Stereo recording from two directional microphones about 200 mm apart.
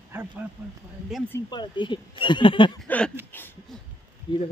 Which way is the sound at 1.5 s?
20° left (ahead or behind).